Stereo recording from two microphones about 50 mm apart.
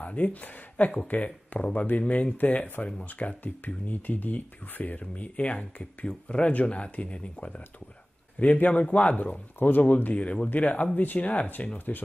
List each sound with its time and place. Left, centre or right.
0.0 s speech: left
9.6 s speech: left